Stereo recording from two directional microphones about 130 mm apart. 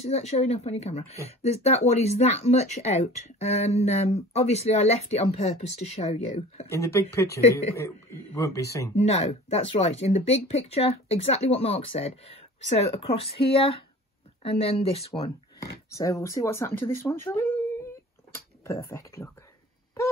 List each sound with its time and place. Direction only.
0.0 s speech: 60° left (ahead or behind)
6.7 s speech: 20° left (ahead or behind)
8.9 s speech: 55° left (ahead or behind)
15.9 s speech: 25° left (ahead or behind)